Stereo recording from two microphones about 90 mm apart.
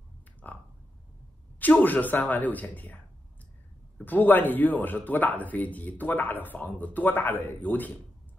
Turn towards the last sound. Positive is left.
turn(degrees=20)  # may be behind; listen again after turning